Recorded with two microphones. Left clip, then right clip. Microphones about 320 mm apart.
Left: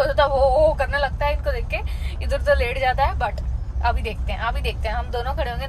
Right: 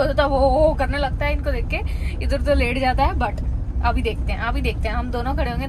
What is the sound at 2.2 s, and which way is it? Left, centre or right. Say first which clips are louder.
Speech: left 1 dB; left.